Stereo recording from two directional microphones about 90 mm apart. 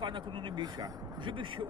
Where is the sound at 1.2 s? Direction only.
65° right (ahead or behind).